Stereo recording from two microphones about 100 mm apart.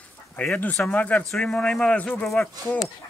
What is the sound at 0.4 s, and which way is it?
Speech, 15° left (ahead or behind).